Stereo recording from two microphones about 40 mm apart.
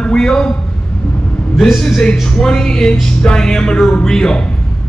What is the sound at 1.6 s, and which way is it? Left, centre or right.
Speech, centre.